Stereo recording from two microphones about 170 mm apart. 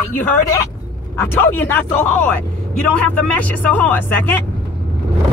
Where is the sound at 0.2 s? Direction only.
15° left (ahead or behind).